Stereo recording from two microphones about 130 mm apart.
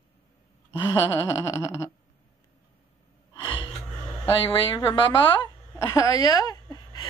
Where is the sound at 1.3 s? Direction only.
25° left (ahead or behind).